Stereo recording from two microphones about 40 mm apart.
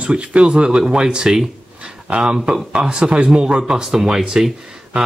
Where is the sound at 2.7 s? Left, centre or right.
Right.